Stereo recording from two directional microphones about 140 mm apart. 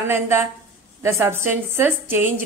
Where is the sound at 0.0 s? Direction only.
15° right (ahead or behind).